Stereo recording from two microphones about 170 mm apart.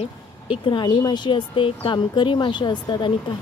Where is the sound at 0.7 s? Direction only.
25° left (ahead or behind).